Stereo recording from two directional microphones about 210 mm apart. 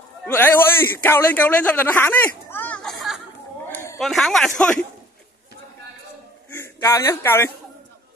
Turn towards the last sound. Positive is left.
turn(degrees=10)  # may be behind; listen again after turning